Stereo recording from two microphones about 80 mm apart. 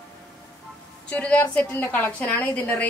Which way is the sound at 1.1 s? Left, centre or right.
Left.